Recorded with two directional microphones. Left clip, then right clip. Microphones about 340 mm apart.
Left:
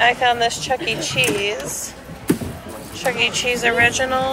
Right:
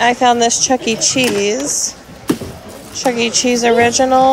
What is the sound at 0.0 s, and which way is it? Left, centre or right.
Speech, right.